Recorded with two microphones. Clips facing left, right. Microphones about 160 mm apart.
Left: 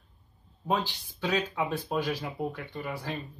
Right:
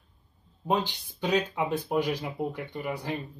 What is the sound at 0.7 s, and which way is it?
Speech, 20° right (ahead or behind).